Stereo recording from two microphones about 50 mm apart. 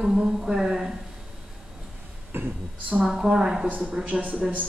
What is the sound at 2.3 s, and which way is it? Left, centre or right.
Speech, right.